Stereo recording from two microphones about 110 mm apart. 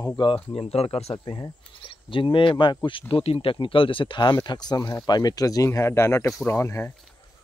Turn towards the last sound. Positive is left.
turn(degrees=25)  # may be behind; listen again after turning